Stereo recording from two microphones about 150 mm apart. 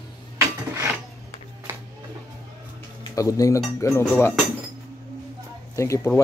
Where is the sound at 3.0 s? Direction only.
20° left (ahead or behind).